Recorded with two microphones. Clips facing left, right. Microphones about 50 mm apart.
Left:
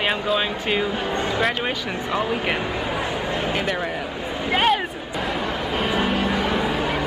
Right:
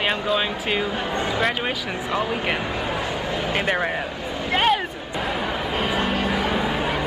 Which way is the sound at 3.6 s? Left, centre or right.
Right.